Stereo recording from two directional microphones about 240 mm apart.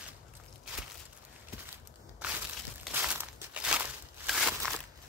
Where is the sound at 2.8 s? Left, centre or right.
Centre.